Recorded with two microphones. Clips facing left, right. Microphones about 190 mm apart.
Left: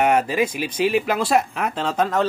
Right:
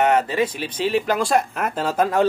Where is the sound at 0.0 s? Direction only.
10° left (ahead or behind).